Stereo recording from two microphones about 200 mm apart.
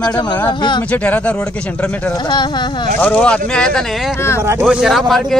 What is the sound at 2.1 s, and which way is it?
Speech, 25° left (ahead or behind).